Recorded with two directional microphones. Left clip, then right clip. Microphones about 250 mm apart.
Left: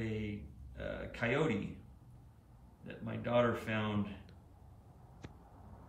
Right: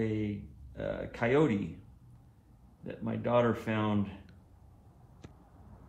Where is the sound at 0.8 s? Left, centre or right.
Centre.